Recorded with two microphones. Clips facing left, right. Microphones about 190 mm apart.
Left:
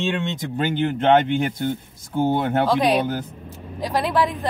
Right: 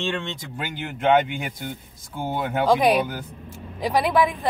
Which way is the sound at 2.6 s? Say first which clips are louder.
Right 4 dB; 15° right (ahead or behind).